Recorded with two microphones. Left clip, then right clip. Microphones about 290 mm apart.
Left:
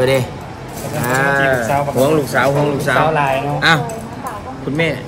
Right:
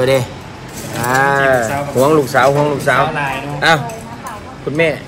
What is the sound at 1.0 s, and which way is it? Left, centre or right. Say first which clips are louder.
Speech: right 2 dB; centre.